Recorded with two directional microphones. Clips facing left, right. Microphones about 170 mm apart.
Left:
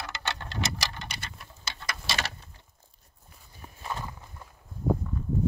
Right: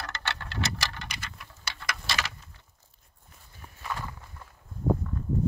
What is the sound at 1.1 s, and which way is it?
Patter, 30° left (ahead or behind).